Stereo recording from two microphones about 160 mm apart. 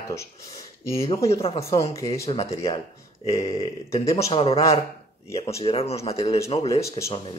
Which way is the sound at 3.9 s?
40° left (ahead or behind).